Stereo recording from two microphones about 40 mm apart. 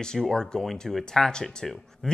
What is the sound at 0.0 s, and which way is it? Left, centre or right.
Speech, centre.